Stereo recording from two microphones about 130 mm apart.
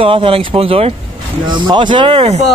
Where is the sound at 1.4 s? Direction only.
35° right (ahead or behind); by 2.4 s 55° right (ahead or behind).